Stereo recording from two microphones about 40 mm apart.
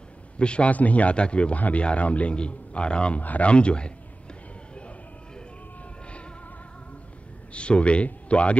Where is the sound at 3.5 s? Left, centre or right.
Left.